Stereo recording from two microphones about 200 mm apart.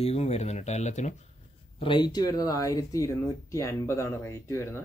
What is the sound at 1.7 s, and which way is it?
Speech, 25° left (ahead or behind).